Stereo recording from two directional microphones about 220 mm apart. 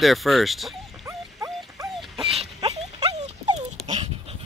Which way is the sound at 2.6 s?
30° right (ahead or behind).